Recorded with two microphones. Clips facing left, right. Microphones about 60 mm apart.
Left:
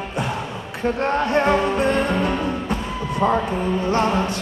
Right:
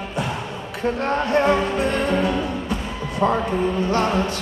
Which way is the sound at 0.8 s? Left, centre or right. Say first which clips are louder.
Left 1 dB; centre.